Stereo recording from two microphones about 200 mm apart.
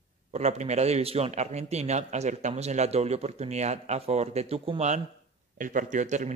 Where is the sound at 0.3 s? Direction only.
35° right (ahead or behind).